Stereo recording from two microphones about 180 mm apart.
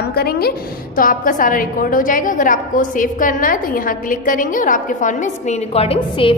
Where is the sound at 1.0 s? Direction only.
50° left (ahead or behind).